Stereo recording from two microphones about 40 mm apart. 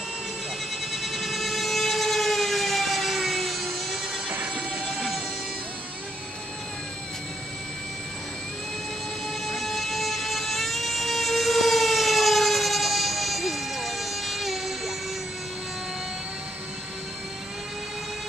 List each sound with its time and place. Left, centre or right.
0.9 s vehicle: centre
4.3 s vehicle: right
9.5 s vehicle: centre